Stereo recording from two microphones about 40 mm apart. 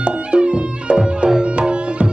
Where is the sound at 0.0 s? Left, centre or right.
Right.